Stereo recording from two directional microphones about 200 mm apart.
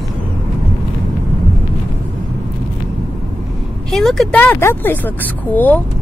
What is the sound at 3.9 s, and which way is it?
Speech, centre (ahead or behind).